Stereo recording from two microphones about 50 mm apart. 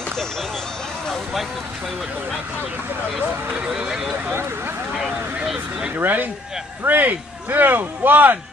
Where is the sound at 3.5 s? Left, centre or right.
Right.